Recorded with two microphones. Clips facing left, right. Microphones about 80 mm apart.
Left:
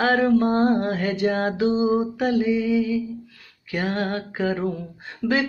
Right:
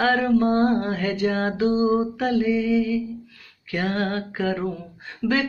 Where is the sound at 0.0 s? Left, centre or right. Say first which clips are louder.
Left 1 dB; left.